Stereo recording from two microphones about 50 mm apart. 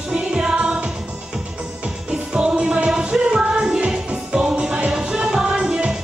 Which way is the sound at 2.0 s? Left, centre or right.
Right.